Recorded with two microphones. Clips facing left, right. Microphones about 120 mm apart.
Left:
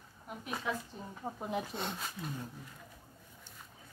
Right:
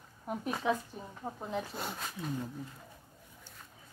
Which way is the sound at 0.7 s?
20° right (ahead or behind).